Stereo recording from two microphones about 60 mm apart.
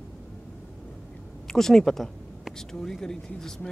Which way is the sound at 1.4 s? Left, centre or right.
Centre.